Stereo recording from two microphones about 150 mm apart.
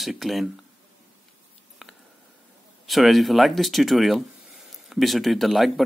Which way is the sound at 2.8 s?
Centre (ahead or behind).